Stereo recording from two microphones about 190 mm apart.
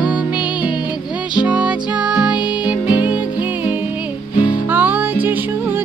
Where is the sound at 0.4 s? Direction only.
25° left (ahead or behind).